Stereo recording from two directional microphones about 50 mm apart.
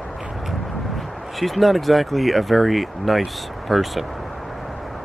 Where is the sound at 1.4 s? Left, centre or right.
Centre.